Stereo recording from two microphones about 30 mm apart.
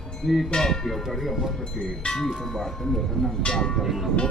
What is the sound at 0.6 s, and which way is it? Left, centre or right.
Speech, centre.